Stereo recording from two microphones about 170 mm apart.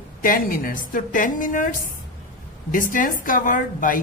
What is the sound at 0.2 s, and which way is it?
A woman's voice, 55° left (ahead or behind).